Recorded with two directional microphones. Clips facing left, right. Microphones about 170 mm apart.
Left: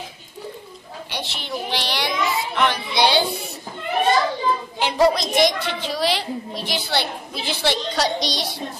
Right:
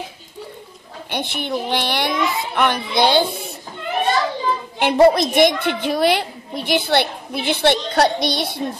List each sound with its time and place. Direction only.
1.1 s a child's voice: 55° right (ahead or behind)
4.7 s a child's voice: 60° right (ahead or behind)